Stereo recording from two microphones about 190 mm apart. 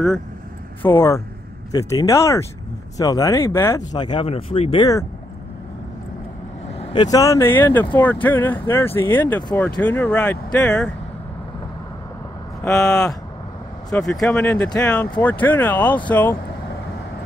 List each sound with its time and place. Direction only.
0.8 s speech: 15° left (ahead or behind)
6.8 s speech: 25° left (ahead or behind); by 11.0 s 5° left (ahead or behind)
12.7 s speech: centre (ahead or behind)